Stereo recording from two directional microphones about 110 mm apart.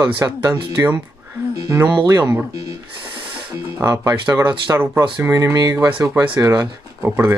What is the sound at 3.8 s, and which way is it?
Speech, 25° right (ahead or behind).